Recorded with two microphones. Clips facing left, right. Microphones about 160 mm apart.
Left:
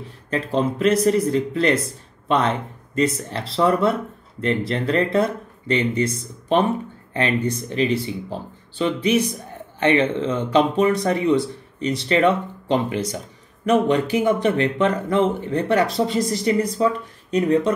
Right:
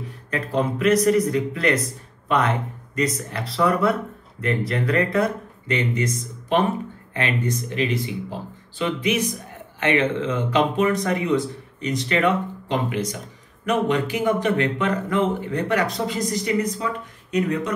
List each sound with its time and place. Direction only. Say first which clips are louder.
0.0 s speech: left 3 dB; 30° left (ahead or behind)